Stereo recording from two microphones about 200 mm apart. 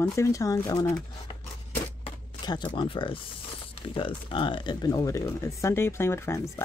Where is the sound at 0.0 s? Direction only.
15° left (ahead or behind).